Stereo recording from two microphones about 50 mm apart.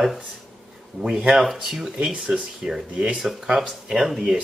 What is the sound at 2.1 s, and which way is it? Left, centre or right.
Speech, right.